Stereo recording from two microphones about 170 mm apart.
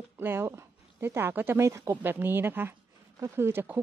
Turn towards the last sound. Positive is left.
turn(degrees=-15)  # may be behind; listen again after turning